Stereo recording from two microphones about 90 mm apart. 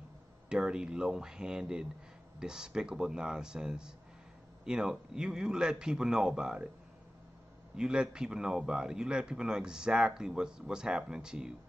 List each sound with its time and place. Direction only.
0.5 s a man's voice: 10° right (ahead or behind)
7.7 s a man's voice: 10° right (ahead or behind)